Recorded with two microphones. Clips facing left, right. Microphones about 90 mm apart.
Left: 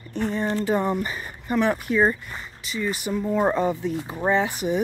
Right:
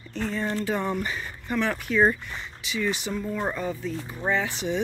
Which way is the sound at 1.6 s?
15° left (ahead or behind).